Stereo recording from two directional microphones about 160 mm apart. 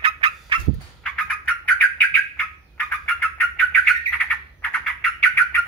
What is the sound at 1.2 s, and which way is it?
Bird, 10° left (ahead or behind).